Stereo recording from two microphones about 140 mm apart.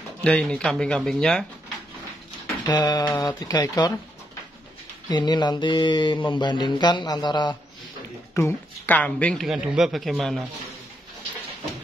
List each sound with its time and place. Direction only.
0.2 s speech: 5° left (ahead or behind)
2.4 s speech: 25° left (ahead or behind)
5.1 s mantra: 30° left (ahead or behind)
8.4 s speech: 15° left (ahead or behind)